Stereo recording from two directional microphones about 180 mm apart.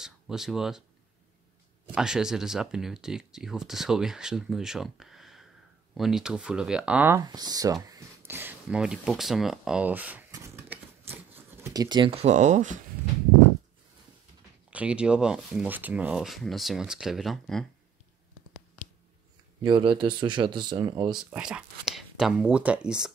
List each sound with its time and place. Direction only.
0.0 s speech: 5° right (ahead or behind)
2.0 s speech: 5° right (ahead or behind)
7.2 s speech: 20° right (ahead or behind)
10.3 s a sound: 10° right (ahead or behind); by 12.8 s 40° right (ahead or behind)
14.7 s speech: 5° right (ahead or behind)
19.6 s speech: 25° right (ahead or behind)
21.1 s speech: 5° right (ahead or behind)